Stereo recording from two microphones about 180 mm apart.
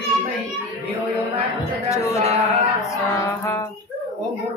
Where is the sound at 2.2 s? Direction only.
35° right (ahead or behind).